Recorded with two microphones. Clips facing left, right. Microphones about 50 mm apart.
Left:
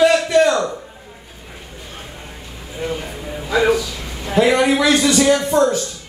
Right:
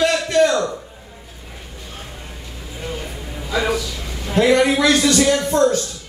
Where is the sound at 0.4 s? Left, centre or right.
Left.